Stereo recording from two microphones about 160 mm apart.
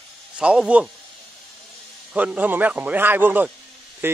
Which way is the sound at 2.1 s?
10° right (ahead or behind).